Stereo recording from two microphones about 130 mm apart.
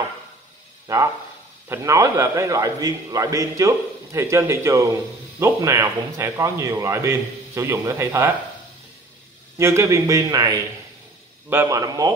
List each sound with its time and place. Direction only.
1.7 s a man's voice: 20° right (ahead or behind)
9.6 s a man's voice: 20° right (ahead or behind)